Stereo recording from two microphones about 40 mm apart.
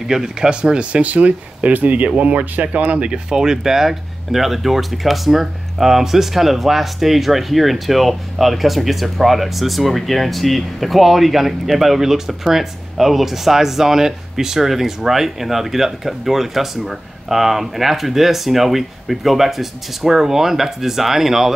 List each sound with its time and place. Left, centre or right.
0.1 s speech: centre
0.5 s speech: right
1.0 s speech: right
3.1 s speech: centre